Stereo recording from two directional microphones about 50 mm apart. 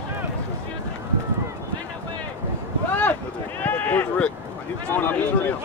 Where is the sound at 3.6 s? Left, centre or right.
Left.